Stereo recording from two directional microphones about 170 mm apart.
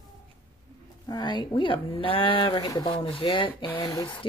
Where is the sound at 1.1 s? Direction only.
25° left (ahead or behind).